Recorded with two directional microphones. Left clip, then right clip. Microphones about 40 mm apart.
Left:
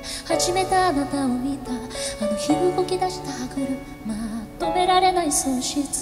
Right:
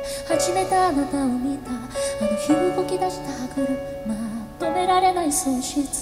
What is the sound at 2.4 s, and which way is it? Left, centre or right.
Speech, right.